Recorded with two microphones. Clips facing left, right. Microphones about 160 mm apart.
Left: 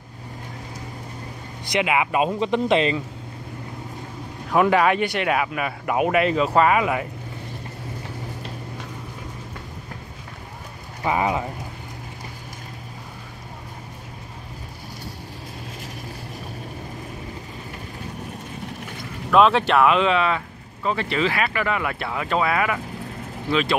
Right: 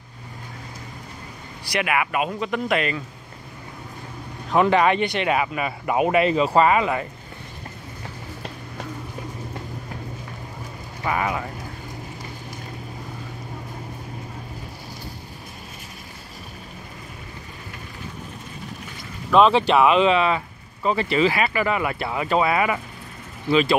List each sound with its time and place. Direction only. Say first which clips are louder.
1.7 s speech: left 2 dB; 20° left (ahead or behind)
4.5 s speech: even; 5° left (ahead or behind)
11.1 s speech: left 3 dB; 20° left (ahead or behind)
19.3 s speech: right 1 dB; centre (ahead or behind)